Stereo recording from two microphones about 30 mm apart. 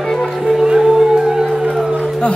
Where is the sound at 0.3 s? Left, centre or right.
Centre.